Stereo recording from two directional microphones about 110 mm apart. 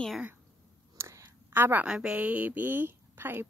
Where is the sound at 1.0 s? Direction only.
25° right (ahead or behind).